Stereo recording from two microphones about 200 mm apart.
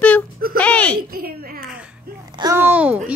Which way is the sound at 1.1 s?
50° right (ahead or behind).